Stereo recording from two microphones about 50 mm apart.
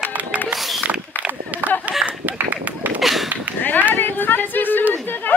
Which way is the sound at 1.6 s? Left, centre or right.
Right.